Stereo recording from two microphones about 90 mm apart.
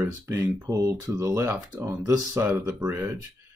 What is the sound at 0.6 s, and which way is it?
Speech, 35° right (ahead or behind).